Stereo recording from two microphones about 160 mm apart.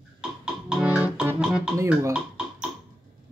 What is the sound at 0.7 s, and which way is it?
Music, 5° right (ahead or behind).